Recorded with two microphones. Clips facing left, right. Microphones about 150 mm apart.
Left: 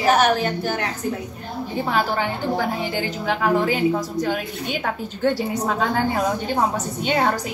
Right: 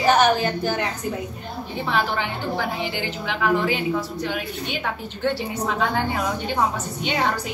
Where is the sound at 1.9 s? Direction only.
40° left (ahead or behind).